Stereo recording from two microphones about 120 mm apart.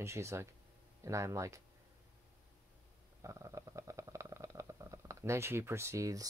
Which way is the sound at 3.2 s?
25° right (ahead or behind).